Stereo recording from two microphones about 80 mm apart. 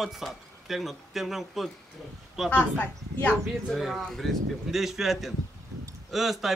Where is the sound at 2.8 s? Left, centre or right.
Centre.